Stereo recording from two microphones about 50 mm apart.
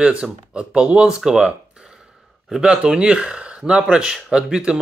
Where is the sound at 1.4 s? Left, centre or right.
Centre.